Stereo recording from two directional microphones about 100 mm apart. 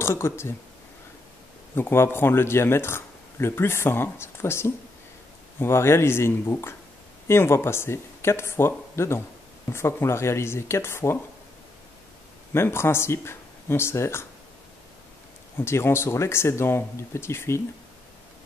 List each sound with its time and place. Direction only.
0.0 s speech: 25° left (ahead or behind)
1.8 s speech: 25° left (ahead or behind)
12.5 s speech: 25° left (ahead or behind)
15.5 s speech: 25° left (ahead or behind)